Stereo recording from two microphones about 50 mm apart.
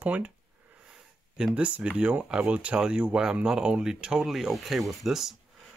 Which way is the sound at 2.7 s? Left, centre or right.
Centre.